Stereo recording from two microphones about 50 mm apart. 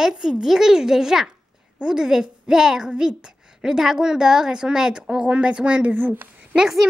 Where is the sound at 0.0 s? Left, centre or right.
Centre.